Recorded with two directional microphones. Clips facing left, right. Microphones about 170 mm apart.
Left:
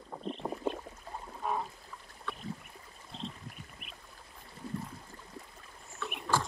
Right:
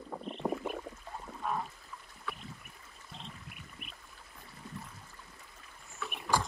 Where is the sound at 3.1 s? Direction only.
35° left (ahead or behind).